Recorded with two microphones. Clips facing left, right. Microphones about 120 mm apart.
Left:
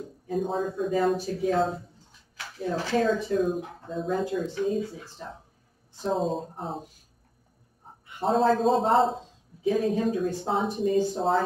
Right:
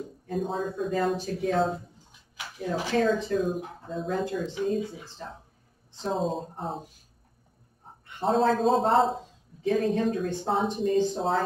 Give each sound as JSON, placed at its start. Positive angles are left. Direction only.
{"t": 0.3, "sound": "speech", "side_deg": 0}
{"t": 2.3, "sound": "speech", "side_deg": -15}
{"t": 3.9, "sound": "speech", "side_deg": 0}
{"t": 6.0, "sound": "speech", "side_deg": 0}
{"t": 8.2, "sound": "speech", "side_deg": 0}